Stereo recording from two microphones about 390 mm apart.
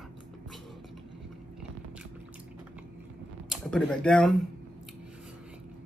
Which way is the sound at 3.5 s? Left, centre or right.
Centre.